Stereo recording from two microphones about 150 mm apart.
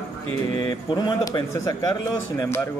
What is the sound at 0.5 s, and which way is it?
A man's voice, 30° left (ahead or behind).